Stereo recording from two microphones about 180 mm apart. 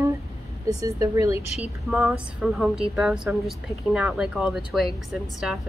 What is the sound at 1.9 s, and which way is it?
A woman's voice, 10° right (ahead or behind).